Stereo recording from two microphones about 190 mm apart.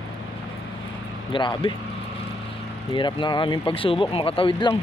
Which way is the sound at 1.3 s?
25° left (ahead or behind).